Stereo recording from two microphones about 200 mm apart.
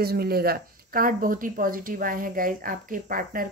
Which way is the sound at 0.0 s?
50° right (ahead or behind).